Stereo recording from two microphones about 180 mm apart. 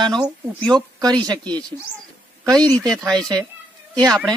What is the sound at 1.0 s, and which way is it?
Speech, 25° right (ahead or behind).